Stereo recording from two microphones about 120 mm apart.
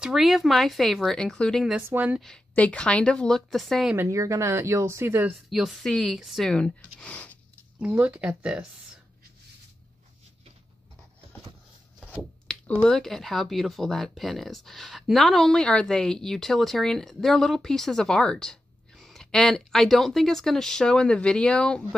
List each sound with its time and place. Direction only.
0.0 s speech: 5° right (ahead or behind)
1.8 s speech: 15° right (ahead or behind)
2.1 s speech: 5° left (ahead or behind)
3.9 s speech: 20° right (ahead or behind)
5.5 s speech: centre (ahead or behind)
7.9 s speech: 15° right (ahead or behind)
12.4 s speech: 10° left (ahead or behind)